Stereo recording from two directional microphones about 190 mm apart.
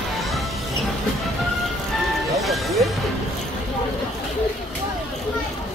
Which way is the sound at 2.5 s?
Centre (ahead or behind).